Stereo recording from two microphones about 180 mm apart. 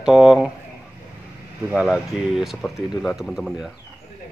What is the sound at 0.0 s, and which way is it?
Speech, centre (ahead or behind).